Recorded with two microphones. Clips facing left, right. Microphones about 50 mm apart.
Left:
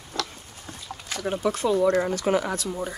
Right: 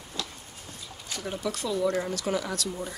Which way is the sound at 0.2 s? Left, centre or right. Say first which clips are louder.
Left 6 dB; left.